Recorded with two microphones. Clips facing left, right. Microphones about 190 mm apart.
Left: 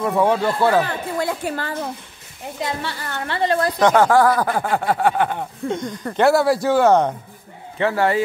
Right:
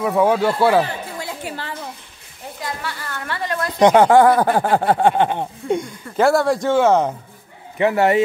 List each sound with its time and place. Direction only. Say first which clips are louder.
0.0 s speech: right 2 dB; centre (ahead or behind)
1.2 s a woman's voice: left 5 dB; 50° left (ahead or behind)
2.6 s a woman's voice: left 3 dB; 25° left (ahead or behind)
3.8 s speech: right 4 dB; 20° right (ahead or behind)
6.1 s speech: even; centre (ahead or behind)
7.8 s speech: right 3 dB; 20° right (ahead or behind)